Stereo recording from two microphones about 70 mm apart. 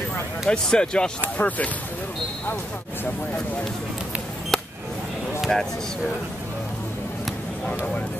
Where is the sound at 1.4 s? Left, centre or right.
Left.